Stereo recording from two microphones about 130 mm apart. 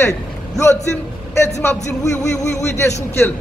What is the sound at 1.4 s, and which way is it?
A woman's voice, 20° left (ahead or behind).